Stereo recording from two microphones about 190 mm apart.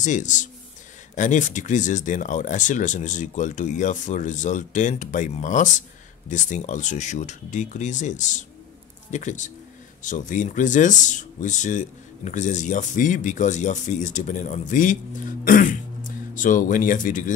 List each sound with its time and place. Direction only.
0.0 s speech: 40° left (ahead or behind)